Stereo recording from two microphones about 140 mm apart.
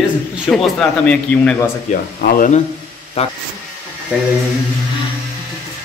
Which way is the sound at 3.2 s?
50° left (ahead or behind).